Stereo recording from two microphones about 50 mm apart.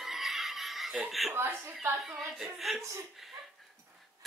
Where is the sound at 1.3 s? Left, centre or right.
Right.